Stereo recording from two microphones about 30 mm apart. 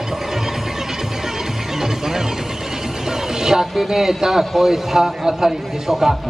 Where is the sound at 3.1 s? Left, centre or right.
Centre.